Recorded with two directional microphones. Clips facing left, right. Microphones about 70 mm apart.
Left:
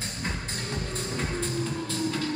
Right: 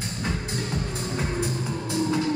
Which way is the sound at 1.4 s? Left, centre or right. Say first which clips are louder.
Right 1 dB; centre.